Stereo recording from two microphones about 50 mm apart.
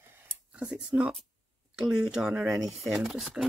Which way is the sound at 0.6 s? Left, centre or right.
Centre.